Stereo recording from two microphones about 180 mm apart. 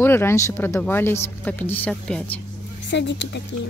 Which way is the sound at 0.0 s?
10° left (ahead or behind).